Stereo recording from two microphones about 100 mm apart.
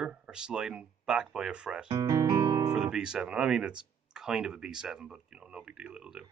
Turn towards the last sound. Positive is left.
turn(degrees=-10)  # may be behind; listen again after turning